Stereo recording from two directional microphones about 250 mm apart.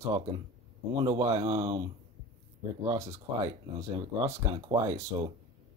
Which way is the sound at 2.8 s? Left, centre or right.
Centre.